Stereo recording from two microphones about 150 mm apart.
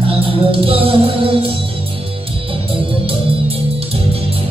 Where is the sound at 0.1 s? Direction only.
35° right (ahead or behind).